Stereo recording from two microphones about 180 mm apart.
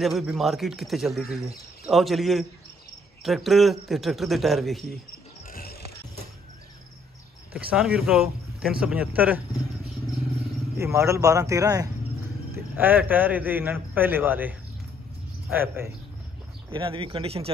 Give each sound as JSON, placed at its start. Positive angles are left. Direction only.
{"t": 0.0, "sound": "speech", "side_deg": 0}
{"t": 5.5, "sound": "music", "side_deg": 55}
{"t": 7.5, "sound": "a man's voice", "side_deg": -5}
{"t": 10.8, "sound": "a man's voice", "side_deg": -15}
{"t": 15.5, "sound": "a man's voice", "side_deg": -10}
{"t": 16.7, "sound": "speech", "side_deg": -30}